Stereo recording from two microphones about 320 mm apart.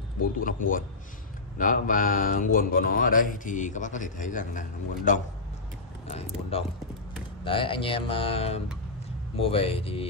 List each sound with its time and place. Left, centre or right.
0.2 s speech: left
1.6 s speech: left
6.5 s speech: centre